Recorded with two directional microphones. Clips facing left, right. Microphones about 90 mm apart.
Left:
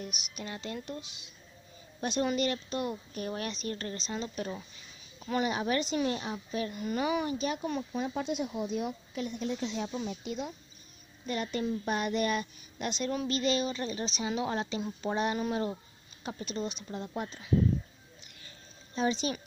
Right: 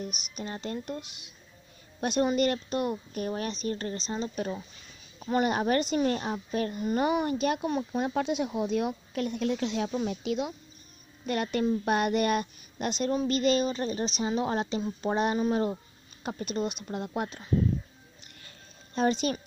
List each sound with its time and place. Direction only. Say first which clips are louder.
0.0 s speech: right 4 dB; 40° right (ahead or behind)
0.8 s a woman's voice: right 4 dB; 55° right (ahead or behind)
3.3 s speech: right 4 dB; 35° right (ahead or behind)
5.3 s a woman's voice: right 4 dB; 50° right (ahead or behind); by 10.5 s 90° right
11.2 s a woman's voice: right 5 dB; 60° right (ahead or behind); by 15.8 s 35° right (ahead or behind)
16.3 s a woman's voice: right 4 dB; 50° right (ahead or behind)
18.9 s a woman's voice: right 4 dB; 55° right (ahead or behind)